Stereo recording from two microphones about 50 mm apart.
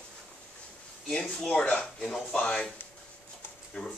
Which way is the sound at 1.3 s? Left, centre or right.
Centre.